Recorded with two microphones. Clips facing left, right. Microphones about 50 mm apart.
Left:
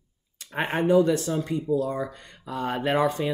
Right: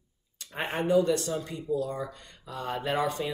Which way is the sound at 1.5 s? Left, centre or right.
Left.